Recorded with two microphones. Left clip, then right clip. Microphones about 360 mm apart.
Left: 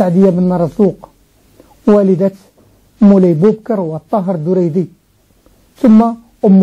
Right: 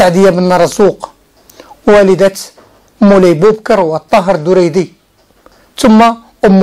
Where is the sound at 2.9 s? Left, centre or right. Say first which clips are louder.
Right 4 dB; right.